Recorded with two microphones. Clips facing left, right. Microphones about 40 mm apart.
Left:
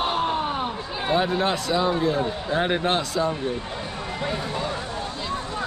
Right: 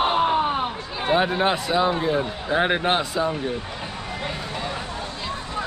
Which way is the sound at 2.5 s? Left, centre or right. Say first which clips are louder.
Right 3 dB; centre.